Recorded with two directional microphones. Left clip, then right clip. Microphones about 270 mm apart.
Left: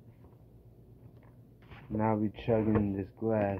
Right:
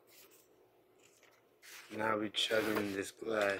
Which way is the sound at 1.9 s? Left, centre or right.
Right.